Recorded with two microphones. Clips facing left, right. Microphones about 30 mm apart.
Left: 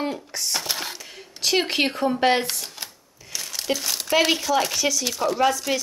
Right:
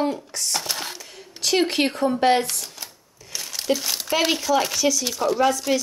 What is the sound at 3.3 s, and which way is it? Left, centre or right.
Speech, centre.